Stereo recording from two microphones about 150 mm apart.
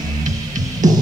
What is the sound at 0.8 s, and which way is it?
Music, 55° right (ahead or behind).